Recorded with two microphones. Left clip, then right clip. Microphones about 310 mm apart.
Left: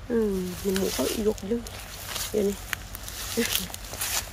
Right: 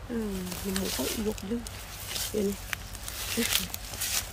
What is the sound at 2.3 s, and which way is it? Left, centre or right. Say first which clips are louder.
Speech: left 6 dB; centre.